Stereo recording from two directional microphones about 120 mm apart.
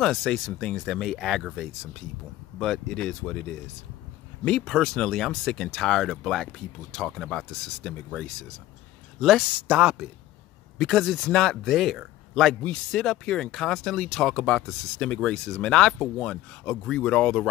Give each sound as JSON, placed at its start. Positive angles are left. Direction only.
{"t": 0.0, "sound": "speech", "side_deg": 5}
{"t": 4.5, "sound": "speech", "side_deg": 5}
{"t": 9.2, "sound": "speech", "side_deg": -5}